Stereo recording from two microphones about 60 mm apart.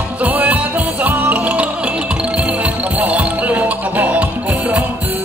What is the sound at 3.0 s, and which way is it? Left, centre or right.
Music, right.